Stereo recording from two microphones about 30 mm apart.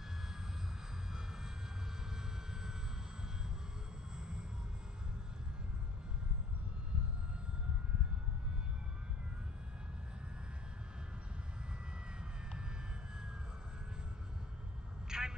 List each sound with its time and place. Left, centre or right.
1.1 s vehicle: centre
15.0 s vehicle: right